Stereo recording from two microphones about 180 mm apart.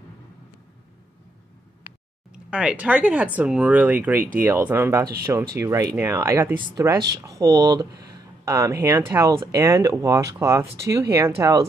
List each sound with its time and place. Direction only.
2.3 s speech: 5° right (ahead or behind)